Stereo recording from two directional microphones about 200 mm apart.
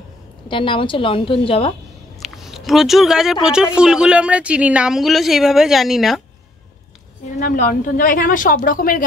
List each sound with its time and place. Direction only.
0.5 s a woman's voice: 25° left (ahead or behind)
2.1 s a sound: centre (ahead or behind)
3.4 s a woman's voice: 5° right (ahead or behind)
7.3 s a woman's voice: 40° left (ahead or behind)